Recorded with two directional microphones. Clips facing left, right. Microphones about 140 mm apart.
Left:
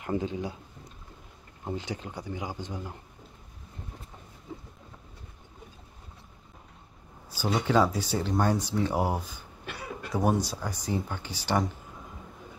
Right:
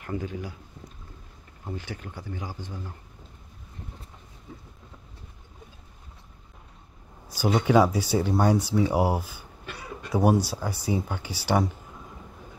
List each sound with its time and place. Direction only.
0.0 s speech: 20° left (ahead or behind)
1.6 s speech: 20° left (ahead or behind)
7.2 s speech: 15° right (ahead or behind)